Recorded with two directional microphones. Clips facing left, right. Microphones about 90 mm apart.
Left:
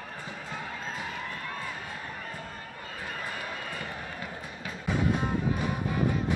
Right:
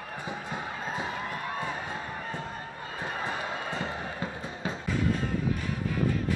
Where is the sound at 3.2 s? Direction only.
25° right (ahead or behind).